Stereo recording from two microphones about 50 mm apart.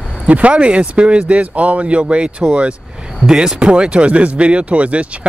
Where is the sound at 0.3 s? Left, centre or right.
Right.